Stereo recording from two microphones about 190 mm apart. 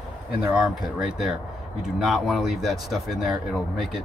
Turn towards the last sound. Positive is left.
turn(degrees=0)  # may be behind; listen again after turning